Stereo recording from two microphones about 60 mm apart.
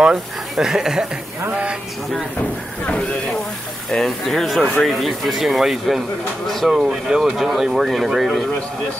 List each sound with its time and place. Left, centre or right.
0.0 s speech: centre
2.9 s speech: centre
3.9 s speech: centre
6.7 s speech: centre